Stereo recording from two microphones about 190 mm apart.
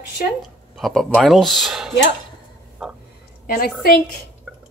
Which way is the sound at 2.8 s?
Centre (ahead or behind).